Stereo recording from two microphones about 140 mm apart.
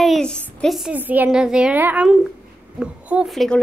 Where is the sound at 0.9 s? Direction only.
10° right (ahead or behind).